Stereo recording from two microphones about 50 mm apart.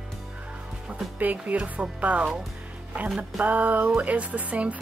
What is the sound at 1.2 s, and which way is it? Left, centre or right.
A woman's voice, right.